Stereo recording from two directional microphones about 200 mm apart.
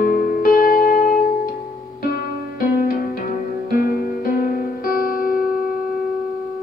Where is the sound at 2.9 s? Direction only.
45° left (ahead or behind).